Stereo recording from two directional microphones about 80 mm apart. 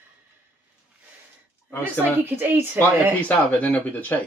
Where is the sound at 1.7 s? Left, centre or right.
Left.